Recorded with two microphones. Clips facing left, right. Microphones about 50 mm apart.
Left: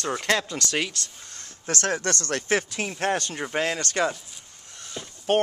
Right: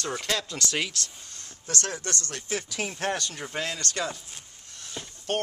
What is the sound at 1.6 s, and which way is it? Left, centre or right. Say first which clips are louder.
Speech: left 6 dB; left.